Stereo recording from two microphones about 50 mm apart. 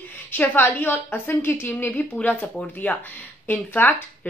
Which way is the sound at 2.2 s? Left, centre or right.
Left.